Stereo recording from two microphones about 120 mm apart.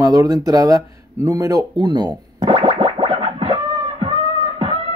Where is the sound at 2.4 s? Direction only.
55° right (ahead or behind).